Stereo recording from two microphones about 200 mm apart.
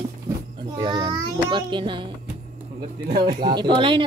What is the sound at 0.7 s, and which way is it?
Child singing, 20° right (ahead or behind).